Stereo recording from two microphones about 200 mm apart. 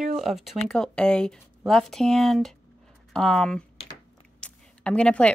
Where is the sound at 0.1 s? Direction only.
Centre (ahead or behind).